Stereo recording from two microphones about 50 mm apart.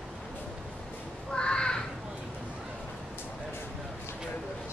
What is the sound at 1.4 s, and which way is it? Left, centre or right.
Crow, centre.